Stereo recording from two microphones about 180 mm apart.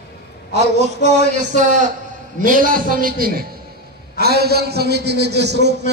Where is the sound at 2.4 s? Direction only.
50° right (ahead or behind).